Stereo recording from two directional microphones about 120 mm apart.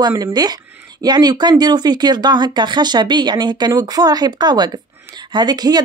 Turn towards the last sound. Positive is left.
turn(degrees=-35)  # may be behind; listen again after turning